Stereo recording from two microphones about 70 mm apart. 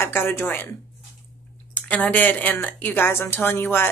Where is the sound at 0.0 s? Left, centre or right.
Left.